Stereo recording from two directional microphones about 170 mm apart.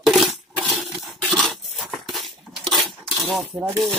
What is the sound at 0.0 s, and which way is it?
Coin, centre (ahead or behind).